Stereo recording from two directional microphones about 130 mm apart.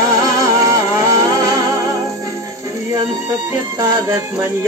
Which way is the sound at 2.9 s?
25° right (ahead or behind).